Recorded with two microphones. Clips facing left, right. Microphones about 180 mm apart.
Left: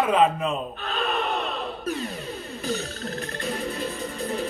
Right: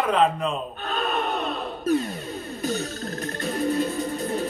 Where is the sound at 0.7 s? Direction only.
40° right (ahead or behind).